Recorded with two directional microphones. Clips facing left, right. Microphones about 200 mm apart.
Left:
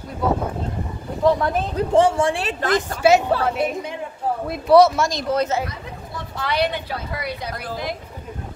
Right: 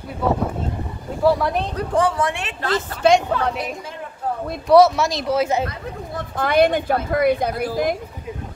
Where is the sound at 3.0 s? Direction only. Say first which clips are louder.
Even; 5° left (ahead or behind).